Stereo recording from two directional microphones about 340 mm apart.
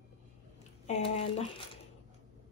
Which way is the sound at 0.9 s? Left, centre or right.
Centre.